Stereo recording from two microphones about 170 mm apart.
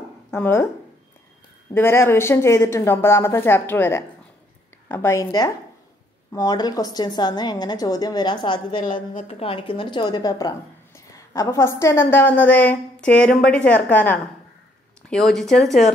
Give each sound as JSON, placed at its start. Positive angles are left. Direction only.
{"t": 0.3, "sound": "a woman's voice", "side_deg": 15}
{"t": 1.7, "sound": "a woman's voice", "side_deg": 15}
{"t": 8.8, "sound": "a woman's voice", "side_deg": 50}
{"t": 9.3, "sound": "a woman's voice", "side_deg": 35}